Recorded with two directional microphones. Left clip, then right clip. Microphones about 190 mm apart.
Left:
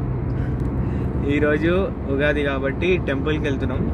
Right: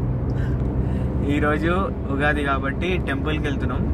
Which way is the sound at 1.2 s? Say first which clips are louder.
Left 2 dB; 5° right (ahead or behind).